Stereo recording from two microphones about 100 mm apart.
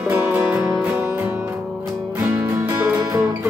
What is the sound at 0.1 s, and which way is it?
Music, 15° right (ahead or behind).